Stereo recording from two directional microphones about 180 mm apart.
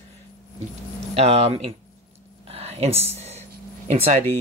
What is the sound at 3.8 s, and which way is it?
Speech, 35° right (ahead or behind).